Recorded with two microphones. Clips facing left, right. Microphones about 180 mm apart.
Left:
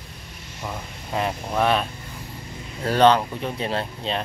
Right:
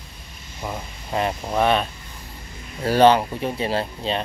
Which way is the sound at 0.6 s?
5° right (ahead or behind).